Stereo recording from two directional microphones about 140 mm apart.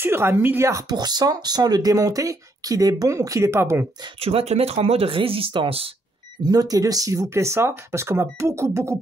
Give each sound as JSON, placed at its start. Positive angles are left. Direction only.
{"t": 0.0, "sound": "speech", "side_deg": -15}
{"t": 4.2, "sound": "speech", "side_deg": -45}
{"t": 6.5, "sound": "speech", "side_deg": -25}